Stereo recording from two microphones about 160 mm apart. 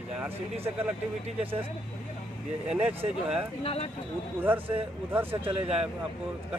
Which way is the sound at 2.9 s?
5° right (ahead or behind).